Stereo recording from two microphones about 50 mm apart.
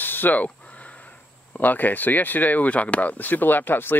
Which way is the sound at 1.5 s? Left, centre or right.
Left.